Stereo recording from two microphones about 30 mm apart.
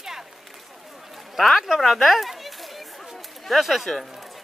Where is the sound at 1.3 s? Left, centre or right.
Centre.